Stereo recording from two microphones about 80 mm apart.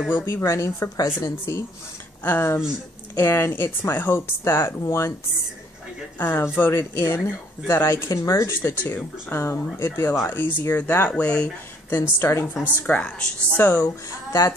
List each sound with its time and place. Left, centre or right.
0.1 s speech: left
2.2 s speech: left
6.1 s speech: left
11.9 s speech: left
12.7 s speech: centre
13.6 s speech: left
13.8 s speech: left